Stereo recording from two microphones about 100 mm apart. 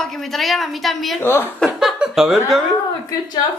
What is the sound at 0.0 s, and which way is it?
A woman's voice, centre (ahead or behind).